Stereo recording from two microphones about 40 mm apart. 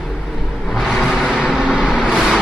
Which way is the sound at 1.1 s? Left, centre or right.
Centre.